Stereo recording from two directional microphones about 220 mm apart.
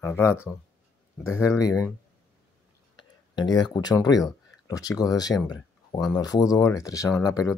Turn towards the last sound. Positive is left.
turn(degrees=15)  # may be behind; listen again after turning